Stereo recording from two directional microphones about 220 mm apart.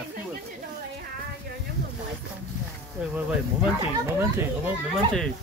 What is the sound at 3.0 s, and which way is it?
Speech, 5° right (ahead or behind).